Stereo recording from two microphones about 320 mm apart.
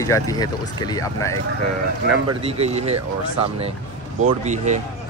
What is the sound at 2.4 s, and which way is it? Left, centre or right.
Speech, centre.